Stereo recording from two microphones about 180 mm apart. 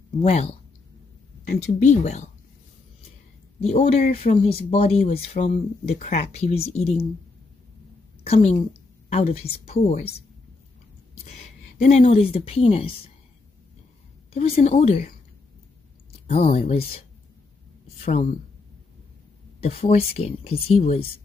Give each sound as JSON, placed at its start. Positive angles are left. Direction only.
{"t": 0.2, "sound": "speech", "side_deg": 35}
{"t": 3.6, "sound": "speech", "side_deg": 35}
{"t": 8.2, "sound": "a woman's voice", "side_deg": 35}
{"t": 11.8, "sound": "speech", "side_deg": 40}
{"t": 14.3, "sound": "speech", "side_deg": 35}
{"t": 16.1, "sound": "speech", "side_deg": 35}
{"t": 18.0, "sound": "speech", "side_deg": 35}
{"t": 19.6, "sound": "speech", "side_deg": 35}